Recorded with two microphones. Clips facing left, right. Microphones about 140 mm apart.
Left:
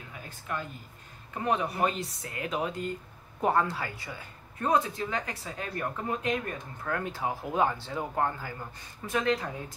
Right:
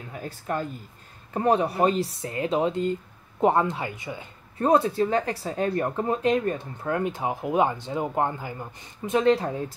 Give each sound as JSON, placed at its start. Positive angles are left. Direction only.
{"t": 0.1, "sound": "speech", "side_deg": -40}
{"t": 4.6, "sound": "speech", "side_deg": -35}